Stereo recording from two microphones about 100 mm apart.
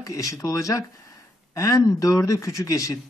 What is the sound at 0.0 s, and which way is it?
Speech, 35° left (ahead or behind).